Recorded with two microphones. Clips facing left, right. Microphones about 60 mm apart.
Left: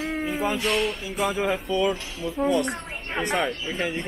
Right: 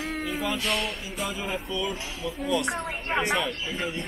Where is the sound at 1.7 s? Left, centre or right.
Left.